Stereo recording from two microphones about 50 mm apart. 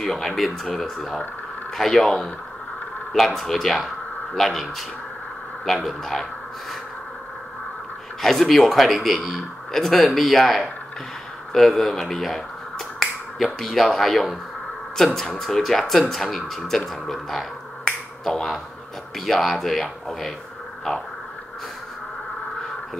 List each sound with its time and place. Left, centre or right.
0.0 s speech: centre
3.3 s speech: centre
5.9 s speech: centre
8.2 s speech: centre